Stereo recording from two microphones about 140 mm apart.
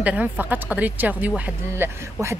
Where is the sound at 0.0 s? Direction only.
10° right (ahead or behind).